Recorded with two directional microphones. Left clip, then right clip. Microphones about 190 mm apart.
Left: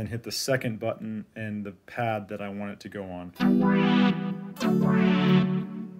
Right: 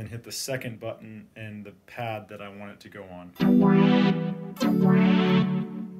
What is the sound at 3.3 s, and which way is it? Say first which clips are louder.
Music: right 3 dB; centre (ahead or behind).